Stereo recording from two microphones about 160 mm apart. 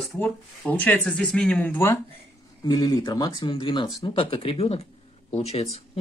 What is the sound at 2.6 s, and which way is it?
Speech, 25° left (ahead or behind).